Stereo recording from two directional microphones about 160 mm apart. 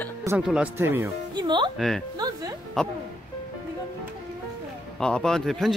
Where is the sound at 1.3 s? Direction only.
30° right (ahead or behind).